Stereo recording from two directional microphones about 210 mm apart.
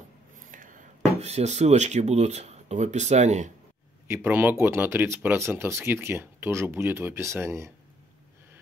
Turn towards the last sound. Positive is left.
turn(degrees=-15)  # may be behind; listen again after turning